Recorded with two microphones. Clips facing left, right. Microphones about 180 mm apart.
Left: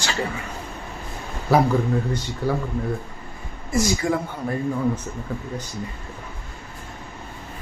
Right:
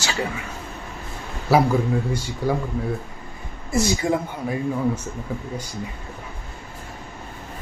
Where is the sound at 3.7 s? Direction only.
25° right (ahead or behind).